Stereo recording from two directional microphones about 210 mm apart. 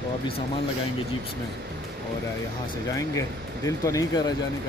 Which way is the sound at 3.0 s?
15° left (ahead or behind).